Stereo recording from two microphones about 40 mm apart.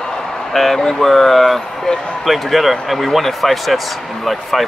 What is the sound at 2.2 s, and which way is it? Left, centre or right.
Speech, centre.